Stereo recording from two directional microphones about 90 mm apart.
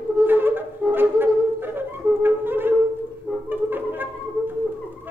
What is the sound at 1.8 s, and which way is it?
Flute, 25° right (ahead or behind).